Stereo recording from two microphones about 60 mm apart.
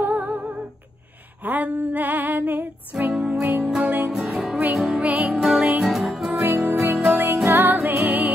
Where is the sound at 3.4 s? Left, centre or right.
Right.